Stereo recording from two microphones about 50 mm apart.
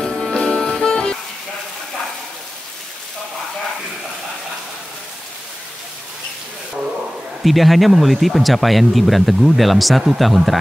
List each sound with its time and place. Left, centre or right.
0.0 s music: centre
7.4 s speech: centre